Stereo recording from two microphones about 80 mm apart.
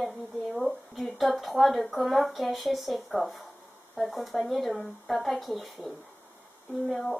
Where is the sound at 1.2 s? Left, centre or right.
Centre.